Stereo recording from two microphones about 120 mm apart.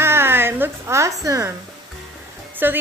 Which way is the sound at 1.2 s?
25° right (ahead or behind).